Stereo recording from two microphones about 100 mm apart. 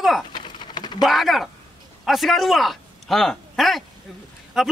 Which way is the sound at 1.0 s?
Centre (ahead or behind).